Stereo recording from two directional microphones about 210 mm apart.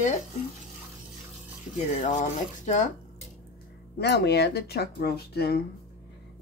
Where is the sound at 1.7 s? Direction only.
35° left (ahead or behind).